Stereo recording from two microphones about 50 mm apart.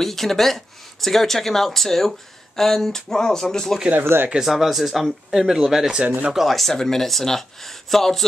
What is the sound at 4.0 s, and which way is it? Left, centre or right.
Speech, right.